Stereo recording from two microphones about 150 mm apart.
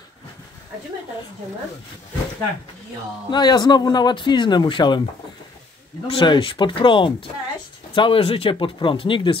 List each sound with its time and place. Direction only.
3.3 s speech: 30° left (ahead or behind)
6.0 s speech: 35° left (ahead or behind)